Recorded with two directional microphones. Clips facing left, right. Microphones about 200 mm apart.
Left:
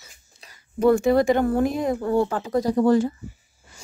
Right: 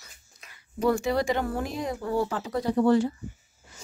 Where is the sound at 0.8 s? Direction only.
55° left (ahead or behind).